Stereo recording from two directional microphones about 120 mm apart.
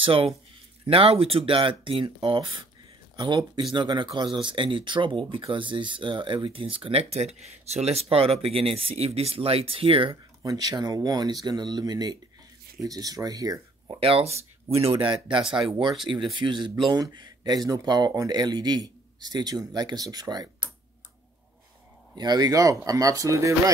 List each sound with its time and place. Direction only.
0.0 s speech: 50° right (ahead or behind)
10.4 s speech: 30° right (ahead or behind)
13.8 s speech: 50° right (ahead or behind)
16.3 s speech: 40° right (ahead or behind)
22.1 s speech: 35° right (ahead or behind)